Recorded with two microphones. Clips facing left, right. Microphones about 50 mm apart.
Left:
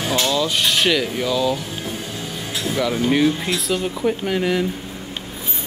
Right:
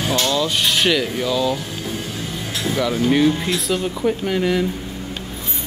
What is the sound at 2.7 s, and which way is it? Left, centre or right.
Speech, centre.